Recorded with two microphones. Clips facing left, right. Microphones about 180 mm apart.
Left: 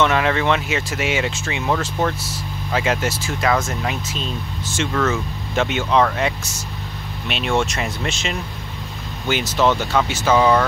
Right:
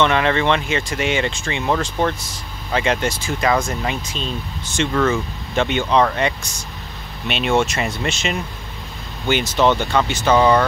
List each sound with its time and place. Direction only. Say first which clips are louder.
0.0 s speech: right 1 dB; 5° left (ahead or behind)